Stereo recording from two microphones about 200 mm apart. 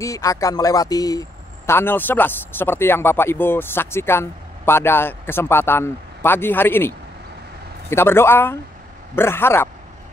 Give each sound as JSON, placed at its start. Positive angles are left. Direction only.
{"t": 0.0, "sound": "speech", "side_deg": 15}
{"t": 7.9, "sound": "speech", "side_deg": 10}